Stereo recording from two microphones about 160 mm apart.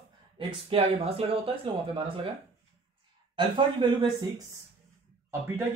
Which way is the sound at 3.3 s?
30° right (ahead or behind).